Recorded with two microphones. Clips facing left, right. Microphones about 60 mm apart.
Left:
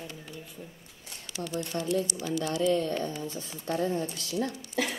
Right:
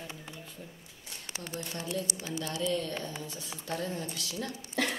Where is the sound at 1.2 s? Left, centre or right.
Right.